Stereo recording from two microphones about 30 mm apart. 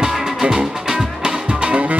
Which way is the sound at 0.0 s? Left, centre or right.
Right.